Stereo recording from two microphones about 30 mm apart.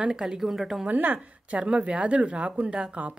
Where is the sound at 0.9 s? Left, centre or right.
Right.